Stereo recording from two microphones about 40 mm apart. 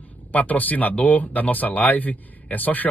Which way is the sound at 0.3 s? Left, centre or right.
Left.